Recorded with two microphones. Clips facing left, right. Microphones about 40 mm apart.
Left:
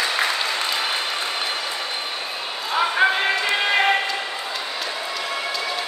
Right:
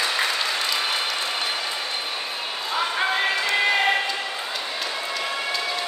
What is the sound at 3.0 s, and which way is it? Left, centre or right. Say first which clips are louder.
Music: left 7 dB; left.